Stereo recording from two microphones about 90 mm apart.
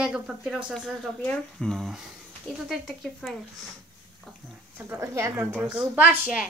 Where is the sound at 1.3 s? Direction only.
5° left (ahead or behind).